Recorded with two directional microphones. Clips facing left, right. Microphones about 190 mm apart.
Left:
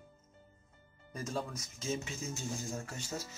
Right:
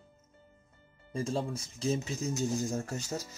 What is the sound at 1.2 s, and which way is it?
Speech, 30° right (ahead or behind).